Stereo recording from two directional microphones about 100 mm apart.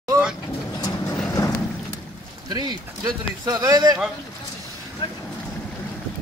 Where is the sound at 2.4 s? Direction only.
45° right (ahead or behind).